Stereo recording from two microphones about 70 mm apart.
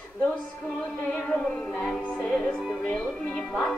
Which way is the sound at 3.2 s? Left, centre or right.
Centre.